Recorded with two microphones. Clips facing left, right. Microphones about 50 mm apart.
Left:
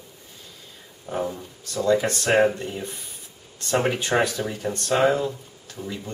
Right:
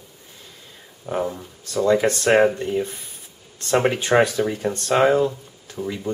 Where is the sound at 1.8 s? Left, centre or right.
Right.